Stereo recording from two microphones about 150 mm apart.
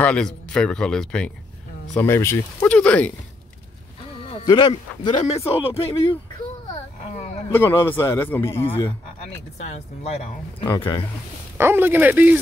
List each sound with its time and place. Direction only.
0.0 s speech: 5° left (ahead or behind)
2.0 s speech: 15° left (ahead or behind)
4.5 s speech: 30° left (ahead or behind)
5.1 s speech: 45° left (ahead or behind)
7.5 s speech: 15° left (ahead or behind)
9.6 s speech: 45° left (ahead or behind)
10.8 s speech: 35° left (ahead or behind)
11.5 s speech: 15° right (ahead or behind)